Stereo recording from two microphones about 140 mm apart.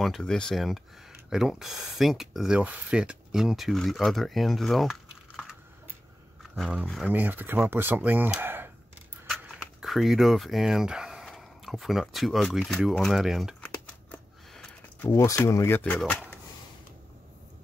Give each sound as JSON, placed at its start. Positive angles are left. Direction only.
{"t": 0.0, "sound": "speech", "side_deg": 5}
{"t": 6.5, "sound": "speech", "side_deg": 0}
{"t": 9.3, "sound": "speech", "side_deg": -5}
{"t": 14.1, "sound": "sniff", "side_deg": 5}
{"t": 15.0, "sound": "speech", "side_deg": 20}